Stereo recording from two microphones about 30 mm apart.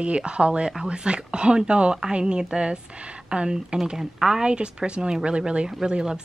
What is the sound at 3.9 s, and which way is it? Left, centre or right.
Speech, right.